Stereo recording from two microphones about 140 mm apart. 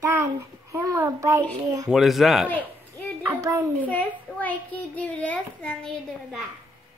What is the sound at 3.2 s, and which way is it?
Speech, 20° right (ahead or behind).